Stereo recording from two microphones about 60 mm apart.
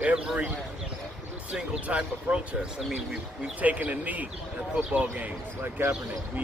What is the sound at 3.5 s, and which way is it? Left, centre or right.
Speech, right.